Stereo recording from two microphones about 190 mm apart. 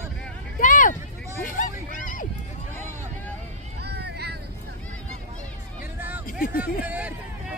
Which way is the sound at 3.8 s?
60° right (ahead or behind).